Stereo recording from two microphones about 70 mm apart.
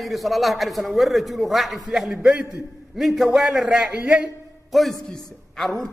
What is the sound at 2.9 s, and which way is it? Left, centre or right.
A man's voice, centre.